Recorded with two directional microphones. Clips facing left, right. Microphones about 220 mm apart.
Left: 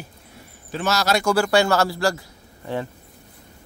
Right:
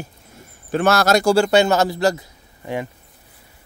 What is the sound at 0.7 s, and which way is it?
Speech, 55° right (ahead or behind).